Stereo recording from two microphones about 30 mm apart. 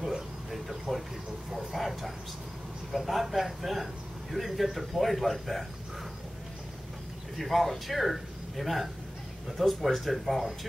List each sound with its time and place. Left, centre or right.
0.5 s a sound: centre
1.5 s speech: centre
7.3 s speech: centre